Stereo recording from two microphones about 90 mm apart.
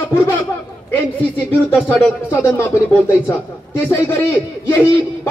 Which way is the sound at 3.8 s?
25° left (ahead or behind).